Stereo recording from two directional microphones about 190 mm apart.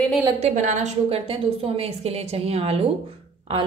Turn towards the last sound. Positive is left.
turn(degrees=-30)  # may be behind; listen again after turning